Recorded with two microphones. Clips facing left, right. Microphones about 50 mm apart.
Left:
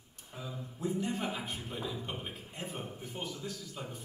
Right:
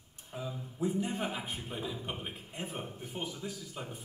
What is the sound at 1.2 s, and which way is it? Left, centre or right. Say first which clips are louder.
Speech: even; centre.